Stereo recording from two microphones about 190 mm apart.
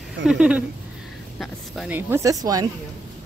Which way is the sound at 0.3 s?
5° right (ahead or behind).